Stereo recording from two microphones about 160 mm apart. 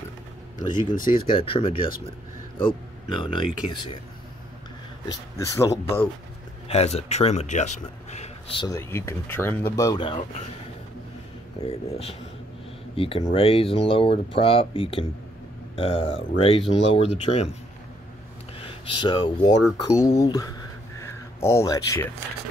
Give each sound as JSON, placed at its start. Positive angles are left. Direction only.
{"t": 0.6, "sound": "speech", "side_deg": 30}
{"t": 5.0, "sound": "speech", "side_deg": 20}
{"t": 6.7, "sound": "speech", "side_deg": 40}
{"t": 8.6, "sound": "speech", "side_deg": 15}
{"t": 11.6, "sound": "speech", "side_deg": 35}
{"t": 18.6, "sound": "a sound", "side_deg": 35}
{"t": 19.8, "sound": "speech", "side_deg": 20}